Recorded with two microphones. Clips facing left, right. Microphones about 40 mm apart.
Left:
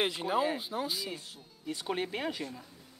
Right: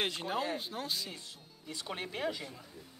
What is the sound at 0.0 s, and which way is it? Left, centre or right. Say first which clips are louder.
Speech: left 5 dB; centre.